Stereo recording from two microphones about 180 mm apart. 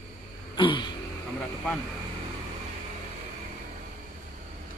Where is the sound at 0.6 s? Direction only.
25° left (ahead or behind).